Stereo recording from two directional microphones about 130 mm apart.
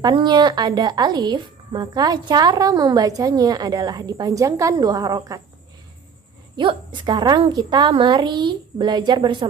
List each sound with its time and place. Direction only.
0.0 s speech: 35° right (ahead or behind)
6.5 s speech: 40° right (ahead or behind)